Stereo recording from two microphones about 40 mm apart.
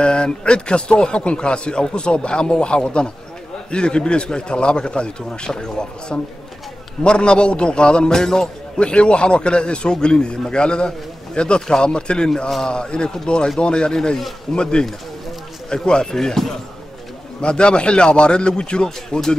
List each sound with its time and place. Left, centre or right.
0.0 s a man's voice: left
8.7 s a man's voice: left
16.2 s speech: centre
17.4 s a man's voice: left
18.9 s speech: centre